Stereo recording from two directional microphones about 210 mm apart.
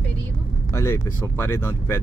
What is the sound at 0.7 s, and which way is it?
Speech, 10° left (ahead or behind).